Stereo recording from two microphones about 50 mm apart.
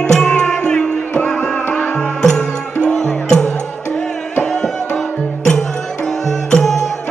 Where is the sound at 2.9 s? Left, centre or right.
Centre.